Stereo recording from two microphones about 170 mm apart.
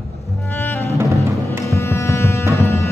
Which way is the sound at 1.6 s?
15° left (ahead or behind).